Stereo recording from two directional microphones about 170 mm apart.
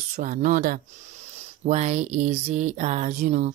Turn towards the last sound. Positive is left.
turn(degrees=-45)  # may be behind; listen again after turning